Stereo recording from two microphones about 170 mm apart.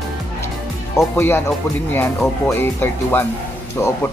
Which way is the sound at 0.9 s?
15° left (ahead or behind).